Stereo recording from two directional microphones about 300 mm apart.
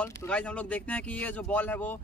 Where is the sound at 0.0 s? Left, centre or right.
Centre.